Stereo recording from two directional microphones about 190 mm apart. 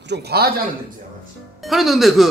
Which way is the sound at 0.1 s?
55° right (ahead or behind).